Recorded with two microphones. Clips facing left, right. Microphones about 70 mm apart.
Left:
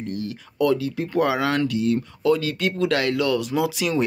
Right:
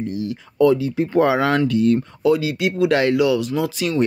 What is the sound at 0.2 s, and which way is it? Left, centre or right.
Speech, right.